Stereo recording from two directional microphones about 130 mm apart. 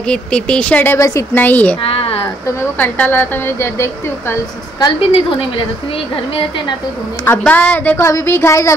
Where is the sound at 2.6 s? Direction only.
15° left (ahead or behind).